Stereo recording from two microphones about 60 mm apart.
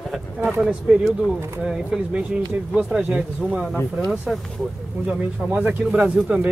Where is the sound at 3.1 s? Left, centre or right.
Centre.